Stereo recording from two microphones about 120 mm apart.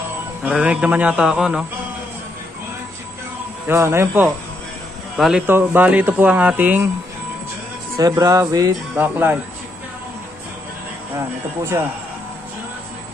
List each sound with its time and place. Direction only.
0.4 s speech: 10° right (ahead or behind)
3.6 s music: 20° right (ahead or behind)
5.1 s speech: 5° right (ahead or behind)
5.5 s speech: 15° right (ahead or behind)
8.0 s music: 30° right (ahead or behind)
8.9 s speech: 15° right (ahead or behind)